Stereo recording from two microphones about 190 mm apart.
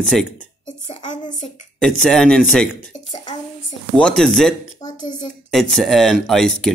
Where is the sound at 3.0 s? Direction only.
20° left (ahead or behind).